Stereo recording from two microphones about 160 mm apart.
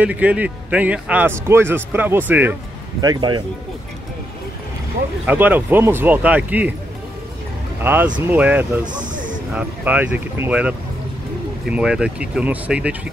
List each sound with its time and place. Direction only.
0.0 s speech: 10° right (ahead or behind)
3.0 s speech: 25° right (ahead or behind)
5.2 s speech: 10° right (ahead or behind)
7.8 s speech: 15° right (ahead or behind)
8.8 s speech: 55° right (ahead or behind)
9.5 s speech: 10° right (ahead or behind)
11.7 s speech: 5° right (ahead or behind)